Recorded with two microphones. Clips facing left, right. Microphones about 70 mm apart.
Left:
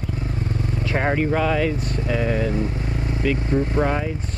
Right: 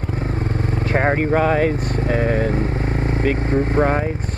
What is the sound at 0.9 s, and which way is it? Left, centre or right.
Speech, right.